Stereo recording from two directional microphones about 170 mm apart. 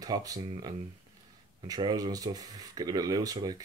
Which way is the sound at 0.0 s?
20° right (ahead or behind).